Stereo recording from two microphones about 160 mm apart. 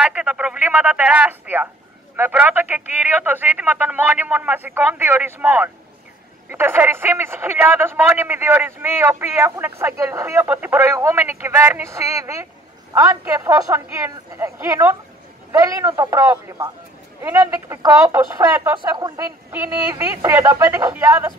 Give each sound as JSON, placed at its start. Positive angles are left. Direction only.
{"t": 0.0, "sound": "speech", "side_deg": -5}